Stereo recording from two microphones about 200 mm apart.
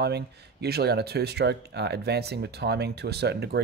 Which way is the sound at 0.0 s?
55° right (ahead or behind).